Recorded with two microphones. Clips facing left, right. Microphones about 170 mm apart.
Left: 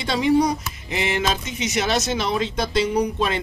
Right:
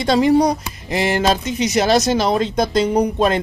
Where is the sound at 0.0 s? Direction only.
40° right (ahead or behind).